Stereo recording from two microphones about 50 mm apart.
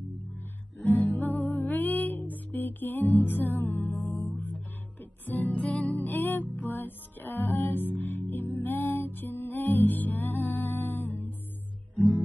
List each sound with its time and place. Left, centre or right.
1.1 s music: left